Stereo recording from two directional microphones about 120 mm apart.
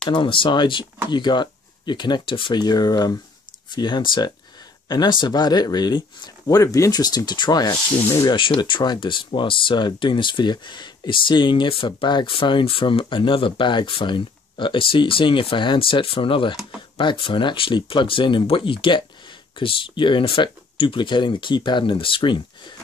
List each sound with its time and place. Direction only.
0.1 s speech: 45° left (ahead or behind)
8.4 s speech: 45° left (ahead or behind)